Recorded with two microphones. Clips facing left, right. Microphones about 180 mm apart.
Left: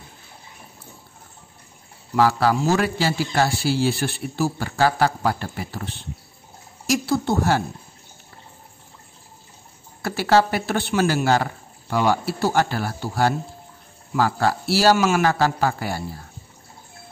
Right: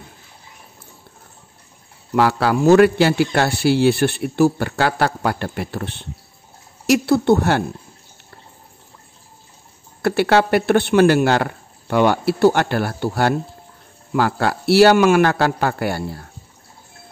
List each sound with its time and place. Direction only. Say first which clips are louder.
2.1 s a man's voice: right 2 dB; 65° right (ahead or behind)
10.0 s a man's voice: right 3 dB; 65° right (ahead or behind)